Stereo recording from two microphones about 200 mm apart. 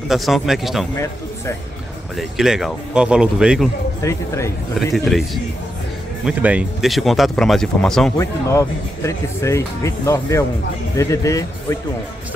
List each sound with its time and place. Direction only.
0.1 s speech: centre (ahead or behind)
2.1 s speech: centre (ahead or behind)
4.0 s speech: 15° left (ahead or behind)
4.9 s speech: centre (ahead or behind)
8.2 s speech: 15° left (ahead or behind)